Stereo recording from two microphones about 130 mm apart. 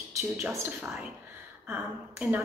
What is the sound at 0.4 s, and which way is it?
Speech, 20° right (ahead or behind).